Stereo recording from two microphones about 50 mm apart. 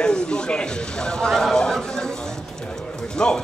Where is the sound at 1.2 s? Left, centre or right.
Centre.